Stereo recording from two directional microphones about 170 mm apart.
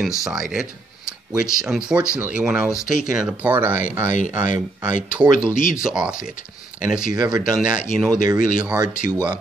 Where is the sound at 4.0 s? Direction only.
45° left (ahead or behind).